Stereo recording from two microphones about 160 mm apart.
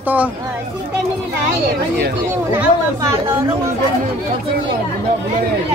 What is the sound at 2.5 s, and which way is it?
Speech, 15° right (ahead or behind).